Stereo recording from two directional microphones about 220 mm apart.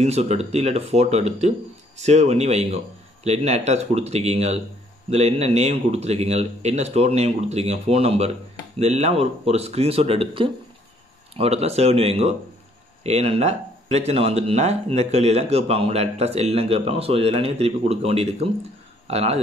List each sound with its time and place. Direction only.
0.0 s speech: 30° right (ahead or behind)